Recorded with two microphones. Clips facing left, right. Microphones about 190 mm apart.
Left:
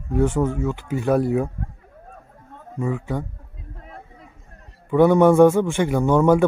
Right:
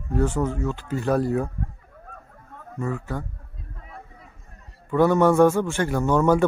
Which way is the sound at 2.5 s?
15° left (ahead or behind).